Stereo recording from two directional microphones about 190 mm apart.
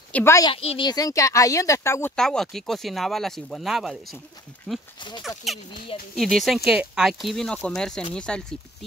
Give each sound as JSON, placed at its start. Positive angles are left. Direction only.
{"t": 0.1, "sound": "speech", "side_deg": 15}
{"t": 0.5, "sound": "speech", "side_deg": 30}
{"t": 6.1, "sound": "speech", "side_deg": 0}